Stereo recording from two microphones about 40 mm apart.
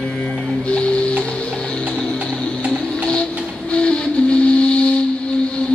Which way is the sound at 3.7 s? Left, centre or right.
Left.